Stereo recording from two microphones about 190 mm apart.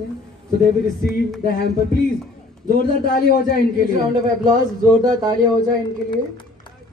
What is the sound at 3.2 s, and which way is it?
Speech, 50° left (ahead or behind).